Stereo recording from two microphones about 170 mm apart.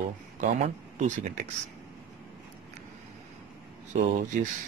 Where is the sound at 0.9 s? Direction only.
45° right (ahead or behind).